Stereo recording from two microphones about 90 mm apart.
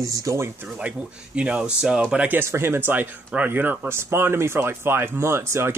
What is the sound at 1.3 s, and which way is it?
Speech, 10° right (ahead or behind).